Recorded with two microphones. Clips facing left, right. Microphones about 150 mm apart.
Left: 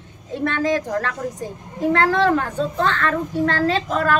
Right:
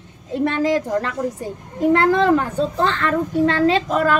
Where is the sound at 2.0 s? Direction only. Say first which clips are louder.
Right 2 dB; 15° right (ahead or behind).